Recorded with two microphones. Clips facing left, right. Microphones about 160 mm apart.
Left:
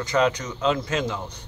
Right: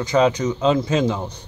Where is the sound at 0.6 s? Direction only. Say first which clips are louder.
Right 5 dB; 25° right (ahead or behind).